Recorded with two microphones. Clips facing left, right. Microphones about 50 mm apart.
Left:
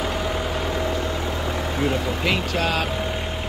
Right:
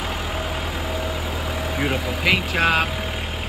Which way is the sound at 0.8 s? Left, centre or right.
Centre.